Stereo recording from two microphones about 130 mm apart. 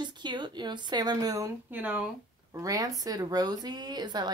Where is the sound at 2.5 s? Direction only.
25° right (ahead or behind).